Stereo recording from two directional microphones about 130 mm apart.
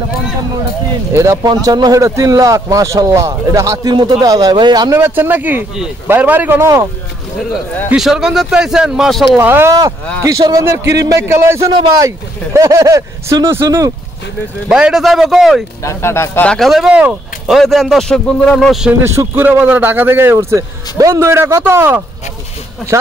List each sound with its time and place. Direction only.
1.1 s a man's voice: 25° right (ahead or behind)
4.9 s a man's voice: 15° right (ahead or behind)
7.9 s speech: 5° right (ahead or behind)
9.4 s a man's voice: 20° right (ahead or behind)
14.7 s speech: 5° right (ahead or behind)
15.8 s speech: 20° left (ahead or behind)
16.4 s speech: centre (ahead or behind)
18.9 s a man's voice: 20° right (ahead or behind)